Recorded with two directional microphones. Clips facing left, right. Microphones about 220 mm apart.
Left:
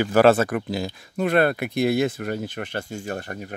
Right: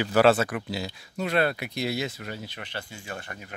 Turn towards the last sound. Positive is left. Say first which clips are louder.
# left 8 dB
turn(degrees=45)  # may be behind; listen again after turning